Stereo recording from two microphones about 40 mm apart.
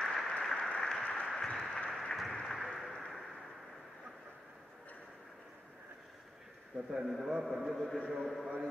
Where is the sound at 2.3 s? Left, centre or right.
Centre.